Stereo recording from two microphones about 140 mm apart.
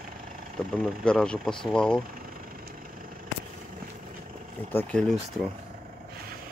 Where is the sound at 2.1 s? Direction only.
90° right.